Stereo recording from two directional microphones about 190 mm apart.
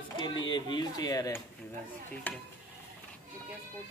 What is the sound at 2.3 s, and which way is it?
Stir, 10° left (ahead or behind).